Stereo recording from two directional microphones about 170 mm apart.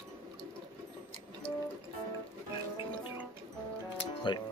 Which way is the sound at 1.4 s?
30° left (ahead or behind).